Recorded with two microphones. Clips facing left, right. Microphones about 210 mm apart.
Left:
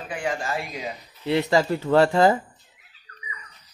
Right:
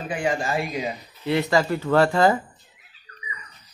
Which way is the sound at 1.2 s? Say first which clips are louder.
Even; 25° left (ahead or behind).